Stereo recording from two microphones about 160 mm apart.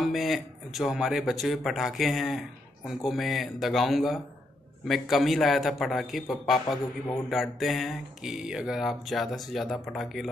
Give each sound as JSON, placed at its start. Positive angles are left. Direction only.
{"t": 0.0, "sound": "speech", "side_deg": 0}